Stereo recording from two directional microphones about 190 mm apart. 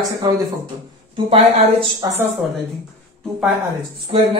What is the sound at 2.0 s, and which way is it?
Speech, 20° right (ahead or behind).